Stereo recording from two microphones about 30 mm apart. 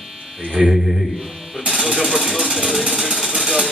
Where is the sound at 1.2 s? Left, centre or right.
Centre.